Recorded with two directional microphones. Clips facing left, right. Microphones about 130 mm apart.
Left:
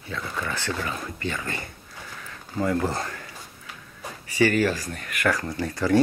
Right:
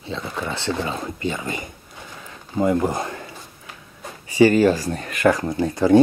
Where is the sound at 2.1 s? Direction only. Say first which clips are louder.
Right 6 dB; 20° right (ahead or behind).